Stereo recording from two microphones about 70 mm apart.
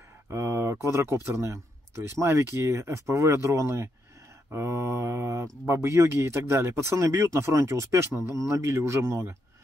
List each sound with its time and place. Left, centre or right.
0.3 s speech: right
8.1 s speech: right
8.5 s speech: right